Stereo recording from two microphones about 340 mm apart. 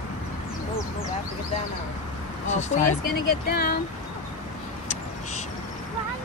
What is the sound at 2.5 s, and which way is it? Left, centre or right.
Speech, left.